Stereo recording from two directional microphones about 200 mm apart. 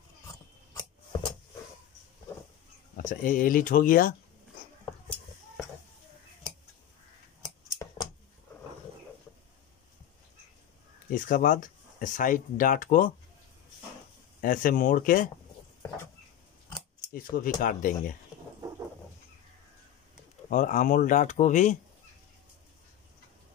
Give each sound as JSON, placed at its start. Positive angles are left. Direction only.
{"t": 3.0, "sound": "speech", "side_deg": 45}
{"t": 7.8, "sound": "a sound", "side_deg": 15}
{"t": 11.1, "sound": "speech", "side_deg": 45}
{"t": 14.4, "sound": "speech", "side_deg": 45}
{"t": 17.1, "sound": "speech", "side_deg": 45}
{"t": 20.4, "sound": "speech", "side_deg": 40}